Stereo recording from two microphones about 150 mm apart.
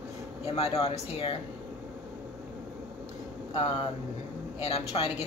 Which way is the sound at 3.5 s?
45° left (ahead or behind).